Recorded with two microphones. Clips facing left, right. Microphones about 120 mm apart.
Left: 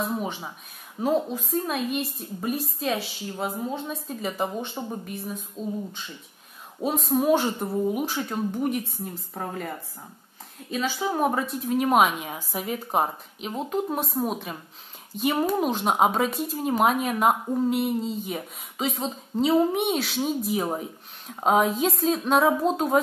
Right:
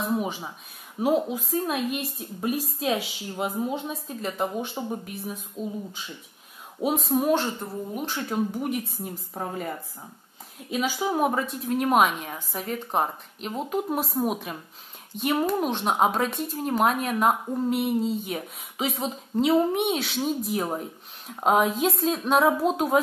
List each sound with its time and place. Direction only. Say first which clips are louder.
0.1 s a woman's voice: right 2 dB; 5° right (ahead or behind)
3.9 s speech: left 1 dB; centre (ahead or behind)
6.8 s speech: even; centre (ahead or behind)
10.7 s speech: right 1 dB; 10° right (ahead or behind)